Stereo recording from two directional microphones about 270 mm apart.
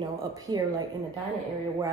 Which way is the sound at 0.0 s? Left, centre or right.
Centre.